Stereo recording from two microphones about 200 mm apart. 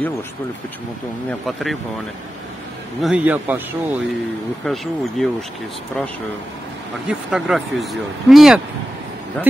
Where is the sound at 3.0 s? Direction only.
5° right (ahead or behind).